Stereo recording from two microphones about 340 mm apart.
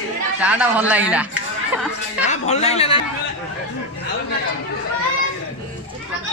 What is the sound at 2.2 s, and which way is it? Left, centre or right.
Speech, centre.